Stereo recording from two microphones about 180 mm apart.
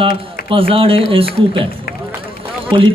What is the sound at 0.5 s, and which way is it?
Speech, 30° right (ahead or behind).